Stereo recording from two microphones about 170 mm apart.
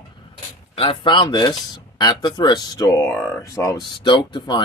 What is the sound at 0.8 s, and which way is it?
Speech, 30° left (ahead or behind).